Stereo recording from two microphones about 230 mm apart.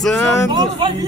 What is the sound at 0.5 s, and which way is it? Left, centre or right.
Speech, centre.